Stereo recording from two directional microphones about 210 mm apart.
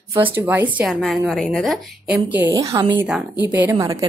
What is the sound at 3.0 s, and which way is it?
A woman's voice, 5° right (ahead or behind).